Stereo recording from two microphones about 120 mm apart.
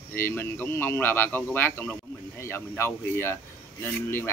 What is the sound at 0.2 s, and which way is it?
A man's voice, 20° left (ahead or behind).